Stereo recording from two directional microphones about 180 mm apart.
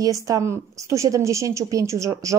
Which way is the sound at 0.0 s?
20° right (ahead or behind).